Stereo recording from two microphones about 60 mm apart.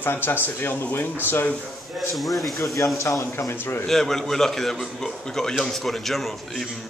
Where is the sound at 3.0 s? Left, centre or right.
Left.